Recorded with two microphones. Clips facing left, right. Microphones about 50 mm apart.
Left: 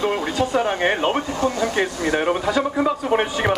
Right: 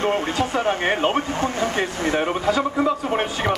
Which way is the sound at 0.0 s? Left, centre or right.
Right.